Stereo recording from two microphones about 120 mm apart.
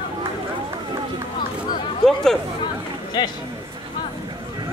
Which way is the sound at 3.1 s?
40° left (ahead or behind).